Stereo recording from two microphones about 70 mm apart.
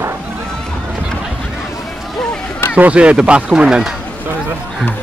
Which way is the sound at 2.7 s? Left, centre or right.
Centre.